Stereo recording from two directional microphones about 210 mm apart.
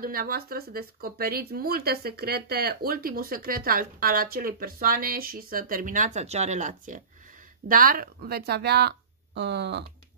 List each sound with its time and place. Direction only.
0.0 s speech: 45° right (ahead or behind)